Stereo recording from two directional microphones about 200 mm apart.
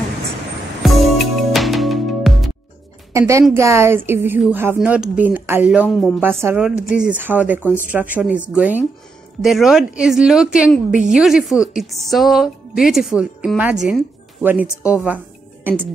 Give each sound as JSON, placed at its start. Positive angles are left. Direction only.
{"t": 0.8, "sound": "music", "side_deg": 0}
{"t": 3.1, "sound": "a woman's voice", "side_deg": -15}
{"t": 10.9, "sound": "a woman's voice", "side_deg": -40}
{"t": 11.1, "sound": "a woman's voice", "side_deg": -5}